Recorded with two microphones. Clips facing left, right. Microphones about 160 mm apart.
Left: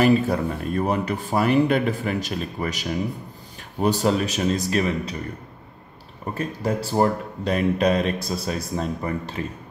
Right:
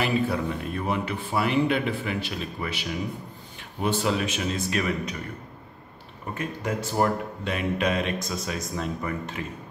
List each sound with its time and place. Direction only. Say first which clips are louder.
0.0 s speech: left 6 dB; 40° left (ahead or behind)
6.3 s speech: left 4 dB; 35° left (ahead or behind)